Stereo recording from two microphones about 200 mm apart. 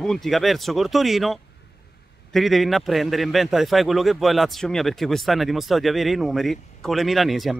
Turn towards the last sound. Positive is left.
turn(degrees=0)  # may be behind; listen again after turning